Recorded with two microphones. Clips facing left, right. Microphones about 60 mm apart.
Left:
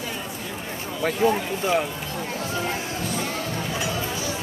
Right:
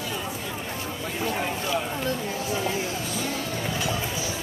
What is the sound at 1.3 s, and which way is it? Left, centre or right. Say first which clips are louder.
Speech: left 4 dB; left.